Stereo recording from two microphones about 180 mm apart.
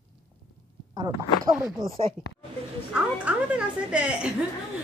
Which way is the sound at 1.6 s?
Centre (ahead or behind).